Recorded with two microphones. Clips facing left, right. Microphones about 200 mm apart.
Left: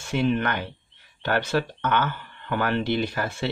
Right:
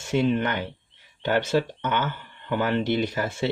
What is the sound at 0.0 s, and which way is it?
Speech, 20° right (ahead or behind).